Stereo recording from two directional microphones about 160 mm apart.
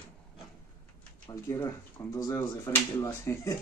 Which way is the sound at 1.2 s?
20° left (ahead or behind).